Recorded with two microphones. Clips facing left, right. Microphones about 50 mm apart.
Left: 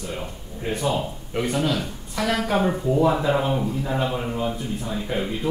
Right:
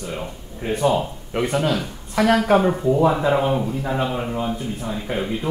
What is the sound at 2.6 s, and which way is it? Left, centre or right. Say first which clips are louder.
Speech: right 3 dB; centre.